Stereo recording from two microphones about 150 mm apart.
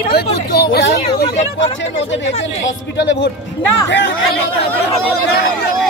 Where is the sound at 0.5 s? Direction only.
90° left.